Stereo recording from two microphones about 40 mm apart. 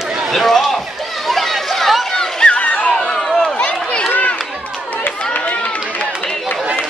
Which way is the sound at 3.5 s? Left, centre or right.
Left.